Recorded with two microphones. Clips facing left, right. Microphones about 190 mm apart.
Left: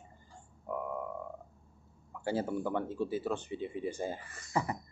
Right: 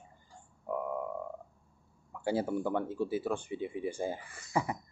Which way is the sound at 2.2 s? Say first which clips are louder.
Right 2 dB; 10° right (ahead or behind).